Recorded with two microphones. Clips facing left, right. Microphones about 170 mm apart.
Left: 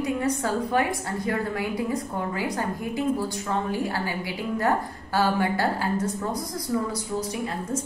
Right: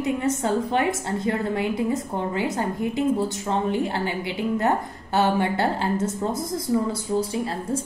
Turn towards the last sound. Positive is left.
turn(degrees=-30)  # may be behind; listen again after turning